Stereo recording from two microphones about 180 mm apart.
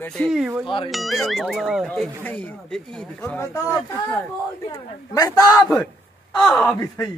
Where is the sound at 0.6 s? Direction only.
30° left (ahead or behind).